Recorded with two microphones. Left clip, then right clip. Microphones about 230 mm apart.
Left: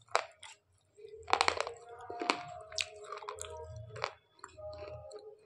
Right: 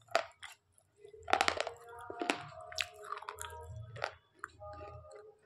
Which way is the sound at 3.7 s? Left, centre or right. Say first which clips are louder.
Left 1 dB; right.